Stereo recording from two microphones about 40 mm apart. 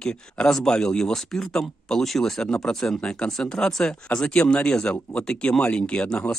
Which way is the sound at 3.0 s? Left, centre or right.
Left.